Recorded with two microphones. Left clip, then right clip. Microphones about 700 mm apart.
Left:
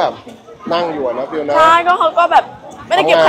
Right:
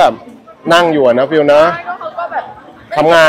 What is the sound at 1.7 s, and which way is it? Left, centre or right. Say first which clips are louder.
Speech: left 10 dB; left.